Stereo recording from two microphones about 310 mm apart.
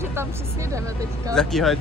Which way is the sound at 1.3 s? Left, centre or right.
Centre.